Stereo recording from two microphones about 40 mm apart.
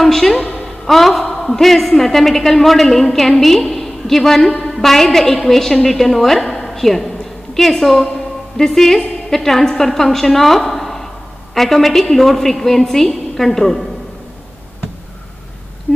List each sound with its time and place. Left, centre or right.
0.0 s a woman's voice: centre
0.4 s a sound: left
0.8 s a woman's voice: centre